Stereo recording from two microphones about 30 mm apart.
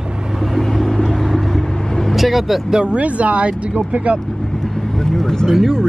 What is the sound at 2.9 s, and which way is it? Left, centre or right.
Speech, right.